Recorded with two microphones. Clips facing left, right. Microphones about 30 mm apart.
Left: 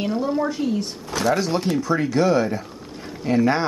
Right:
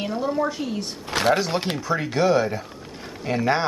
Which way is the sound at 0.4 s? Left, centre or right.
Centre.